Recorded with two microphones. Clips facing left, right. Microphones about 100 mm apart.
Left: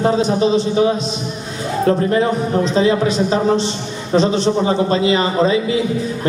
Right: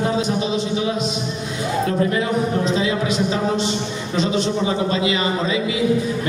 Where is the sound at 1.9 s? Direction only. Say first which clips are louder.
Left 7 dB; 35° left (ahead or behind).